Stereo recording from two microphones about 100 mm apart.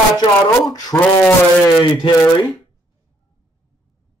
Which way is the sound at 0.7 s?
40° left (ahead or behind).